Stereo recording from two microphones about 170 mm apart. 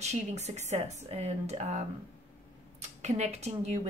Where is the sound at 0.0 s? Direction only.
40° right (ahead or behind).